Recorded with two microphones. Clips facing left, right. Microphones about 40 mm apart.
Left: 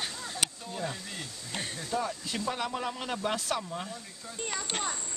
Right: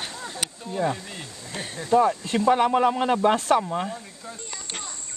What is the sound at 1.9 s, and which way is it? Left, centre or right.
Speech, right.